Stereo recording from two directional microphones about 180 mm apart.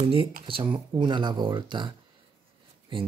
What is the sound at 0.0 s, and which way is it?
Speech, 30° right (ahead or behind).